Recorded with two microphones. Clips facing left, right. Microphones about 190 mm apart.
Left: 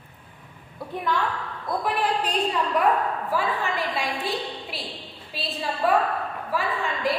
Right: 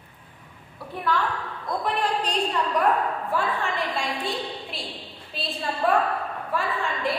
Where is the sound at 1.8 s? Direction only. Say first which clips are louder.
Left 1 dB; 5° left (ahead or behind).